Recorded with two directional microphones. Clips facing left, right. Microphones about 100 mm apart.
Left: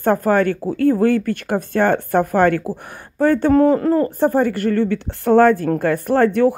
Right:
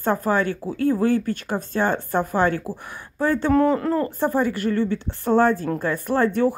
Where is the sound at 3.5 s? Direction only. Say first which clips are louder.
Left 4 dB; 40° left (ahead or behind).